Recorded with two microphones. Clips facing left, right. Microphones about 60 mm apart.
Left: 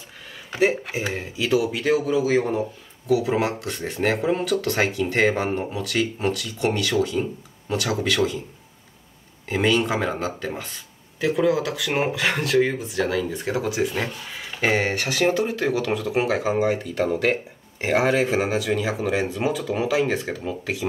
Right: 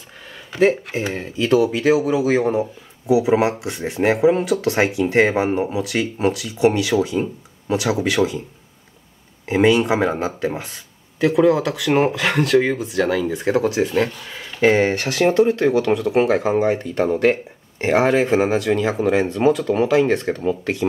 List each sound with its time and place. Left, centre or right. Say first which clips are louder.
0.5 s speech: right 4 dB; centre
9.5 s speech: right 5 dB; centre
11.1 s speech: right 5 dB; centre
15.1 s speech: right 7 dB; centre